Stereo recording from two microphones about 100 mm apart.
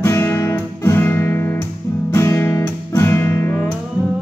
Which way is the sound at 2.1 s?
25° left (ahead or behind).